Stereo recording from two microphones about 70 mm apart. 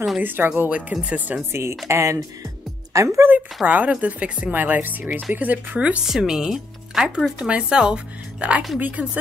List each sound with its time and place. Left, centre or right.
0.2 s speech: right
0.7 s speech: centre
1.5 s speech: right
3.6 s speech: right
6.0 s speech: centre; by 9.2 s right